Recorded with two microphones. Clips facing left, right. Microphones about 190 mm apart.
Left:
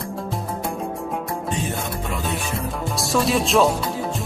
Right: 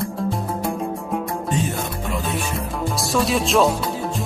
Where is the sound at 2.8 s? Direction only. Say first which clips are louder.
Even; centre (ahead or behind).